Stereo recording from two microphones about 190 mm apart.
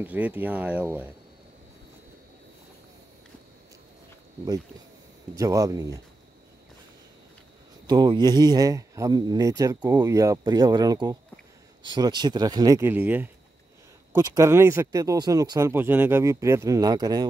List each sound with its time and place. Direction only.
0.0 s speech: 10° right (ahead or behind)
5.4 s speech: 20° right (ahead or behind)
7.8 s speech: 25° right (ahead or behind)
14.1 s speech: 20° right (ahead or behind)